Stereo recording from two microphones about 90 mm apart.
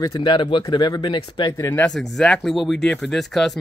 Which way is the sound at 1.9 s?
5° left (ahead or behind).